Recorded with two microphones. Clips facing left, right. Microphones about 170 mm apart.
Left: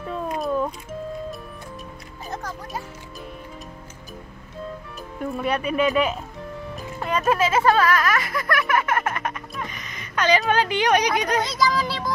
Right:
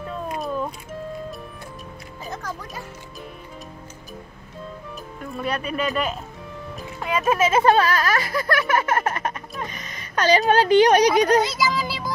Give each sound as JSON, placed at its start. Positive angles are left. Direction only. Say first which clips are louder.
{"t": 0.1, "sound": "music", "louder": "left 4 dB", "side_deg": -5}
{"t": 5.4, "sound": "speech", "louder": "left 3 dB", "side_deg": 10}
{"t": 7.0, "sound": "music", "louder": "even", "side_deg": 0}
{"t": 7.3, "sound": "speech", "louder": "right 3 dB", "side_deg": -25}
{"t": 11.4, "sound": "a sound", "louder": "left 1 dB", "side_deg": -5}